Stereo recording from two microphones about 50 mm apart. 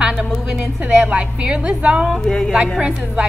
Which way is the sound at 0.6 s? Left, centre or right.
Right.